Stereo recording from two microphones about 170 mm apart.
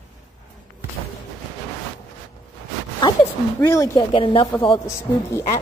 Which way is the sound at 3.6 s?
20° left (ahead or behind).